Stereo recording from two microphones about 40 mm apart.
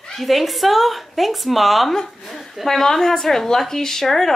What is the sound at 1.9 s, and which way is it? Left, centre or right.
Speech, centre.